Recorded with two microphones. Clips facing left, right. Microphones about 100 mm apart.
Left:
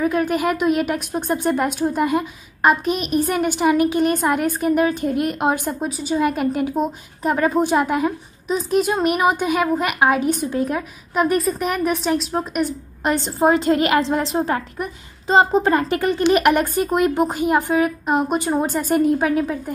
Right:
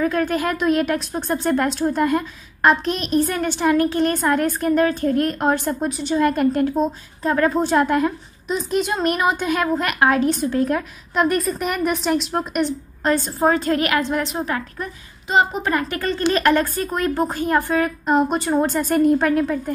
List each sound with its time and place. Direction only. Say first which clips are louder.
0.0 s a woman's voice: left 1 dB; 10° left (ahead or behind)
13.0 s a woman's voice: left 1 dB; 20° left (ahead or behind)
16.0 s a woman's voice: left 3 dB; 15° left (ahead or behind)